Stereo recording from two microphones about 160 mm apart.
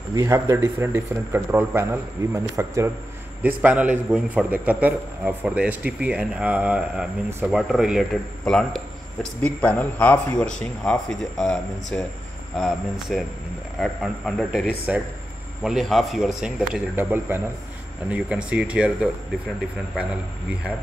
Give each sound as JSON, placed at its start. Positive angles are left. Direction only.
{"t": 0.1, "sound": "a man's voice", "side_deg": -20}
{"t": 3.4, "sound": "a man's voice", "side_deg": -10}